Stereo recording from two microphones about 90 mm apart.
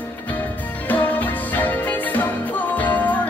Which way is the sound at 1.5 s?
20° left (ahead or behind).